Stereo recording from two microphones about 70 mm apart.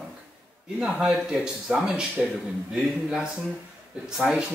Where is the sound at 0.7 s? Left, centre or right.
Centre.